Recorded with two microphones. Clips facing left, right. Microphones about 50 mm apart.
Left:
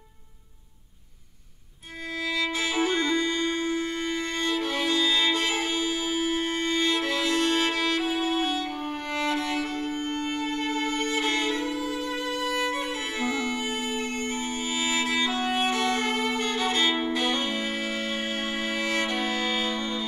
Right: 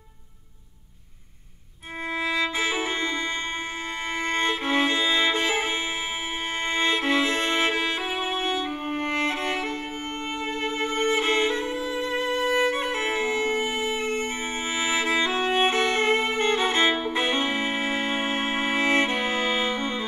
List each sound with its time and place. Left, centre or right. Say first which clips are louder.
2.2 s music: right 2 dB; right
4.4 s violin: right 5 dB; right
14.8 s violin: right 3 dB; right
17.1 s music: right 2 dB; right